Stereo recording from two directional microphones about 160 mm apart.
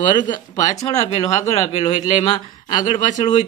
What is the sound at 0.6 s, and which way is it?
Speech, 20° left (ahead or behind).